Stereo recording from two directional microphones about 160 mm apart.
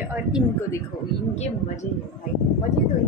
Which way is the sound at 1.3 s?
45° left (ahead or behind).